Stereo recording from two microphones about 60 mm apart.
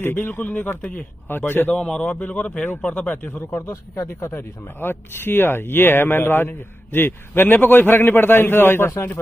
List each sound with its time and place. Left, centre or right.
0.0 s speech: left
1.7 s a man's voice: centre; by 3.4 s left
3.4 s speech: left
4.4 s speech: left